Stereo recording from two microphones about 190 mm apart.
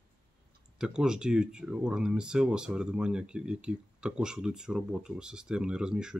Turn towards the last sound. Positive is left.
turn(degrees=-5)  # may be behind; listen again after turning